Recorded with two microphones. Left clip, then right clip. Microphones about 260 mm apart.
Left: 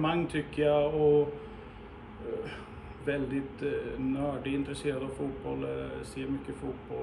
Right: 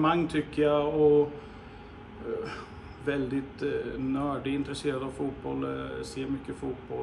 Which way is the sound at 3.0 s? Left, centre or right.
Centre.